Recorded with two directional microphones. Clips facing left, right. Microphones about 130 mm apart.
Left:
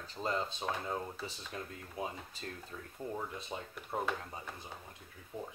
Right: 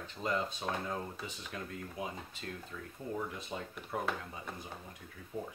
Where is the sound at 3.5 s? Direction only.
15° left (ahead or behind).